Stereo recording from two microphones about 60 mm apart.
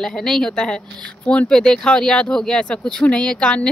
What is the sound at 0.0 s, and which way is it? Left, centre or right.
A woman's voice, centre.